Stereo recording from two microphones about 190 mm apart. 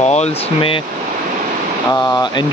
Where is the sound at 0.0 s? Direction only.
35° left (ahead or behind).